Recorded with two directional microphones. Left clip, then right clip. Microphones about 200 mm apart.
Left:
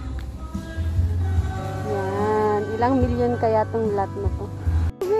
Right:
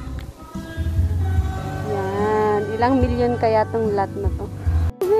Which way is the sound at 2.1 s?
15° left (ahead or behind).